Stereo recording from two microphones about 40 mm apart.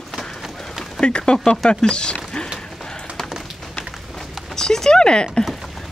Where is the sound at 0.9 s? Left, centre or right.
Left.